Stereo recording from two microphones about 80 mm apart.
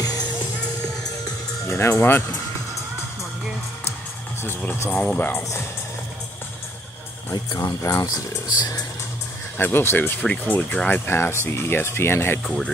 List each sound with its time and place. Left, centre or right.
1.7 s speech: left
4.4 s speech: left
7.5 s speech: left
9.6 s speech: left
12.4 s speech: centre